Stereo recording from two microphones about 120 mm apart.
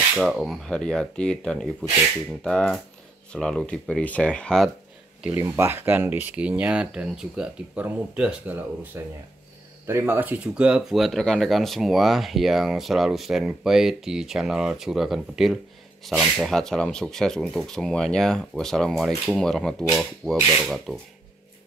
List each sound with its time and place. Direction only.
0.1 s speech: centre (ahead or behind)
5.3 s speech: 20° right (ahead or behind); by 21.0 s centre (ahead or behind)